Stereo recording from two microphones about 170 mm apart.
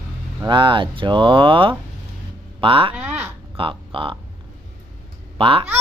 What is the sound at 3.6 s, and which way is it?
Speech, 30° right (ahead or behind).